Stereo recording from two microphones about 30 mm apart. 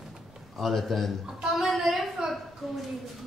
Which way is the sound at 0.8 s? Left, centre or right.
Centre.